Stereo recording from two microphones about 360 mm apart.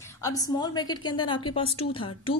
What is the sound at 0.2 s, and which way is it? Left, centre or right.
Speech, centre.